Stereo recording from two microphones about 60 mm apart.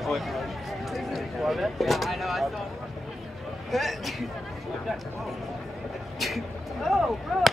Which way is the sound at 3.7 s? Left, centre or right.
Centre.